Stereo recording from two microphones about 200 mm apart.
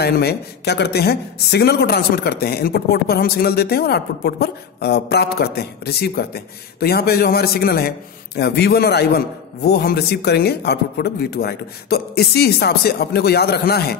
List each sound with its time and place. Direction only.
0.0 s speech: 55° left (ahead or behind)